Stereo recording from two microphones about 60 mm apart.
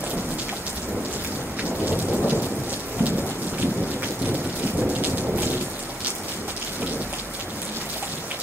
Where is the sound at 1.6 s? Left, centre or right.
Right.